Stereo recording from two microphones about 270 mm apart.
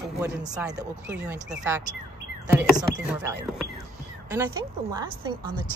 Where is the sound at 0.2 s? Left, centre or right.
Centre.